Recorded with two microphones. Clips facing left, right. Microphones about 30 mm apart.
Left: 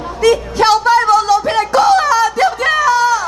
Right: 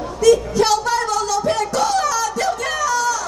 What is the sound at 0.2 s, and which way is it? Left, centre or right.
Music, left.